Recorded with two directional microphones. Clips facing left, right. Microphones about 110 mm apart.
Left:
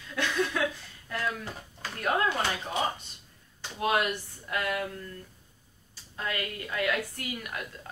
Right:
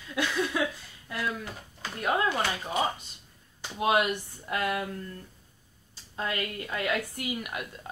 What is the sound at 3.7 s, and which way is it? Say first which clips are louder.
Speech: right 2 dB; 20° right (ahead or behind).